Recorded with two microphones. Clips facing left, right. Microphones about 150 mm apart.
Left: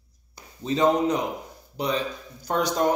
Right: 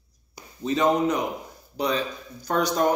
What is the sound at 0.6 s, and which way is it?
Speech, 25° left (ahead or behind).